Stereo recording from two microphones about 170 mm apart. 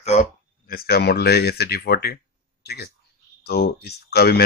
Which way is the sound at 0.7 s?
65° left (ahead or behind).